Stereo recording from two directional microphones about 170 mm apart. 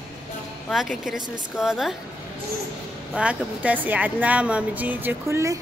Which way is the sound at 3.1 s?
10° right (ahead or behind).